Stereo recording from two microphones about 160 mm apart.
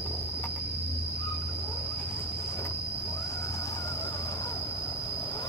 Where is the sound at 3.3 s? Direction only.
20° left (ahead or behind).